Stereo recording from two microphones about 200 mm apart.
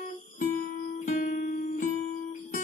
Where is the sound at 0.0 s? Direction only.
45° left (ahead or behind).